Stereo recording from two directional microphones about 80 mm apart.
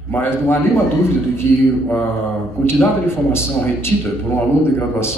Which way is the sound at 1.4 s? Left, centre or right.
Left.